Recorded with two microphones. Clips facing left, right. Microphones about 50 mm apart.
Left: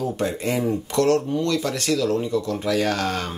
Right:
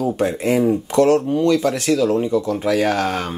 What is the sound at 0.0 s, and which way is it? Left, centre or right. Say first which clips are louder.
Speech: right 5 dB; centre.